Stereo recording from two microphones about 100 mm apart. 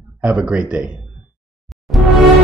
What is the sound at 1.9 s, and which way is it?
Music, centre (ahead or behind).